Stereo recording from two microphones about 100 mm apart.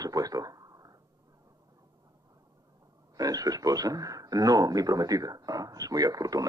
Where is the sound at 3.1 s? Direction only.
40° right (ahead or behind).